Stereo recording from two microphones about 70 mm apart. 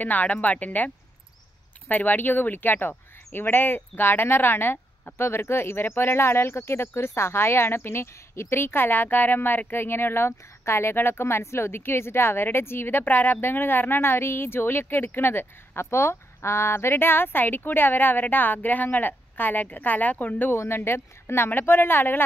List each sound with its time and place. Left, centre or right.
0.0 s a woman's voice: left